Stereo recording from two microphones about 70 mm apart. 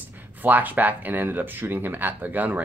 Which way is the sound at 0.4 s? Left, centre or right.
Right.